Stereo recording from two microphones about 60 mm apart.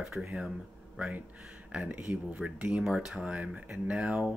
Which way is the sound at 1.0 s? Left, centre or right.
Right.